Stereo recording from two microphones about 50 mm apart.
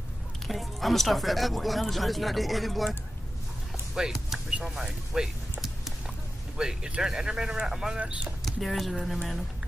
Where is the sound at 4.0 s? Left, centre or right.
Centre.